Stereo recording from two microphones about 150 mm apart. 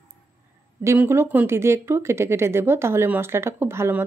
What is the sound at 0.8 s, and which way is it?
Speech, 15° right (ahead or behind).